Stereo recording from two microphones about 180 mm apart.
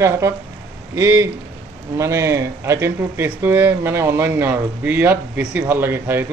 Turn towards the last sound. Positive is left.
turn(degrees=-10)  # may be behind; listen again after turning